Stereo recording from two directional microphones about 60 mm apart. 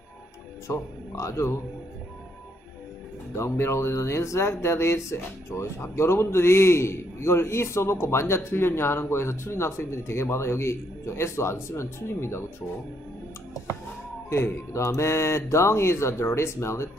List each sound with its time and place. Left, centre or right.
0.7 s speech: left
3.3 s speech: left
14.3 s speech: left